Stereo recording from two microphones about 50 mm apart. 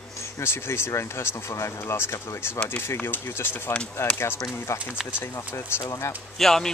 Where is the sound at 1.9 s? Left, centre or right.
Left.